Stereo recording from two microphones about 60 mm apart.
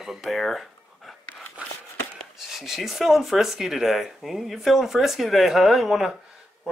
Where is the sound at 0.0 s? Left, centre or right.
Centre.